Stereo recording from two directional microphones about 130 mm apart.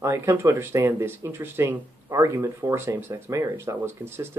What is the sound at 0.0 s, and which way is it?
Speech, 20° right (ahead or behind).